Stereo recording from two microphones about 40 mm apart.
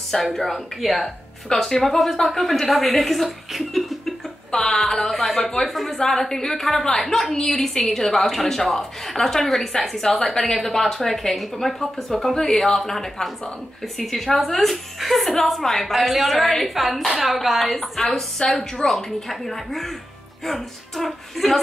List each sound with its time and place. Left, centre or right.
0.1 s a woman's voice: centre
18.4 s a woman's voice: centre
18.9 s a woman's voice: centre